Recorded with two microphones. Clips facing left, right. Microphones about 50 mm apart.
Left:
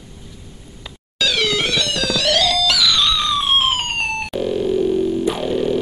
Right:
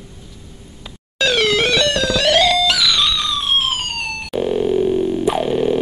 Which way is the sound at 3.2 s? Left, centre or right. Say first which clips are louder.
Left 2 dB; centre.